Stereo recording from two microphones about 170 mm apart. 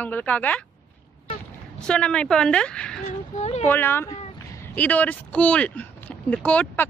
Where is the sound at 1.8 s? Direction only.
5° left (ahead or behind).